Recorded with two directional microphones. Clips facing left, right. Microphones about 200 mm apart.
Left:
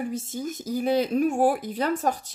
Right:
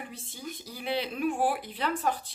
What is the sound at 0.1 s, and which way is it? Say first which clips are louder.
Speech: left 10 dB; 45° left (ahead or behind).